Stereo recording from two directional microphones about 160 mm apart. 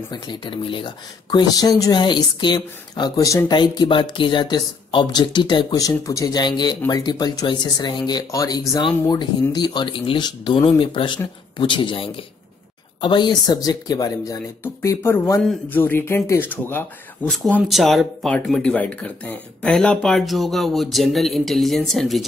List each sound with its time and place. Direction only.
0.1 s speech: 30° left (ahead or behind); by 16.8 s 15° left (ahead or behind)
17.3 s speech: centre (ahead or behind)